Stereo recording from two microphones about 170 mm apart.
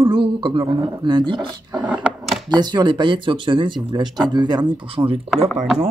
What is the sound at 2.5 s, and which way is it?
Speech, 25° right (ahead or behind).